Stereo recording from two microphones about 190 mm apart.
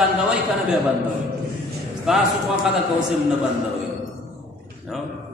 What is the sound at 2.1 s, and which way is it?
Speech, 5° right (ahead or behind).